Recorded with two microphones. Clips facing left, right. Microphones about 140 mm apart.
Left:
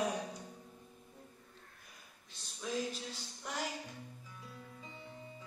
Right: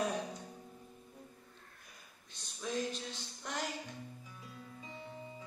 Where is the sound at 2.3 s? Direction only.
5° left (ahead or behind).